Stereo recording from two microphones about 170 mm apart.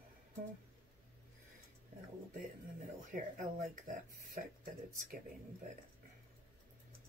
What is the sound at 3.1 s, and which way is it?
Speech, 55° right (ahead or behind).